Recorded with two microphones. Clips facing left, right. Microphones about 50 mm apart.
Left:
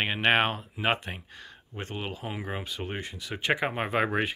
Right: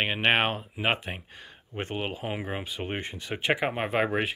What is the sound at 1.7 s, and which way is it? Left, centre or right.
Speech, right.